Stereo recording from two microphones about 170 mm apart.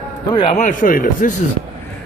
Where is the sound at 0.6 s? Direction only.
50° left (ahead or behind).